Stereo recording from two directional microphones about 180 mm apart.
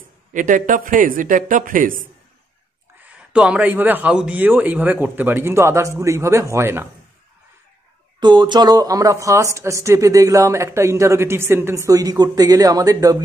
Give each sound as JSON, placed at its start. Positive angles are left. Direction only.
{"t": 0.3, "sound": "a man's voice", "side_deg": -45}
{"t": 3.0, "sound": "speech", "side_deg": -5}
{"t": 8.2, "sound": "speech", "side_deg": -25}